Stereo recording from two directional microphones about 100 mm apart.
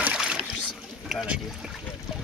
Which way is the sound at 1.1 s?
5° right (ahead or behind).